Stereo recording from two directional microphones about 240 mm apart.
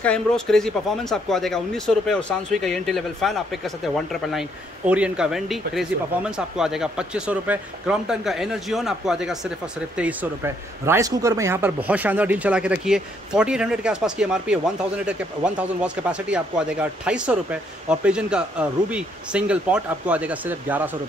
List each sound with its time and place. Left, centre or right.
0.0 s speech: centre